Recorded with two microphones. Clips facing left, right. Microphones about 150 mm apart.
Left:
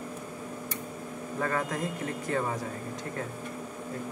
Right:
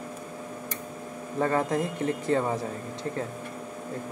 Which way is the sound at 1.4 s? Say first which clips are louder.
Right 6 dB; 25° right (ahead or behind).